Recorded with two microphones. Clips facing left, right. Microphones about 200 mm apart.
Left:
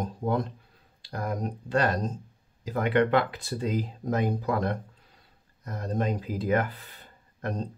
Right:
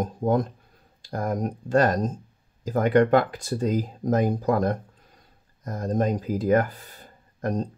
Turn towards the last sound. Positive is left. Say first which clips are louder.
# right 5 dB
turn(degrees=-45)  # may be behind; listen again after turning